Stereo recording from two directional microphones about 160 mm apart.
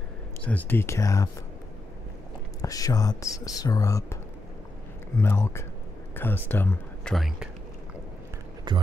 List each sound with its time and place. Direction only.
0.4 s speech: 10° left (ahead or behind)
2.6 s speech: 20° left (ahead or behind)
7.2 s speech: centre (ahead or behind)
8.7 s speech: 30° right (ahead or behind)